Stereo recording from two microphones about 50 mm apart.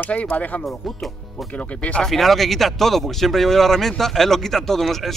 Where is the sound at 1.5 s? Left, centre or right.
Left.